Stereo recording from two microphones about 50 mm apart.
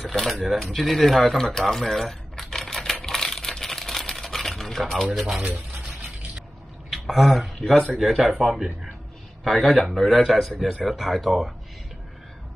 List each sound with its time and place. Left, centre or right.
0.0 s typewriter: centre
6.9 s speech: centre